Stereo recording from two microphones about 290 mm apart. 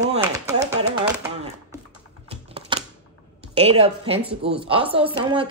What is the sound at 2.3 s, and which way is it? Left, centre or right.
Typing, centre.